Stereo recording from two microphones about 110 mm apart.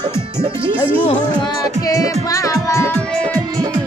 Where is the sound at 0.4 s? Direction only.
50° right (ahead or behind).